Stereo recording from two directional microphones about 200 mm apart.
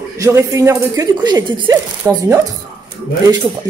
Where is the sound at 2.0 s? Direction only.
10° right (ahead or behind).